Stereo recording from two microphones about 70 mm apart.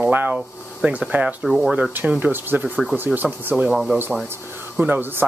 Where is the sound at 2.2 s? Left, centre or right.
Right.